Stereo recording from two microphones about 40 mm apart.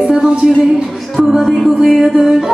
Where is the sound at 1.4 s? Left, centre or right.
Centre.